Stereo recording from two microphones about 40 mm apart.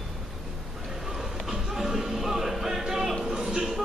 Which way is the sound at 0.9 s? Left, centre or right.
Centre.